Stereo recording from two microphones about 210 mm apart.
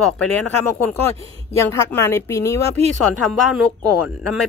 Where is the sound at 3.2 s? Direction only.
Centre (ahead or behind).